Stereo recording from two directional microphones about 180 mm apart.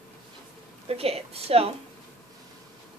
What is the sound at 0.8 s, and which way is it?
Speech, 35° right (ahead or behind).